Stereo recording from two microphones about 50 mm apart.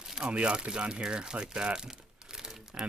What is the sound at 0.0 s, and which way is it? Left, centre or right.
Crumpling, centre.